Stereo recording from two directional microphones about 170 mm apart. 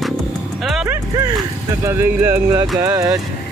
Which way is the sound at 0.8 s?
15° right (ahead or behind).